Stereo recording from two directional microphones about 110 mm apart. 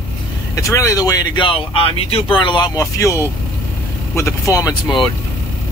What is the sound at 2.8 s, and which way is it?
Speech, 30° left (ahead or behind).